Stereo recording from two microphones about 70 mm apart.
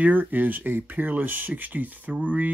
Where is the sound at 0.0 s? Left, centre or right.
Right.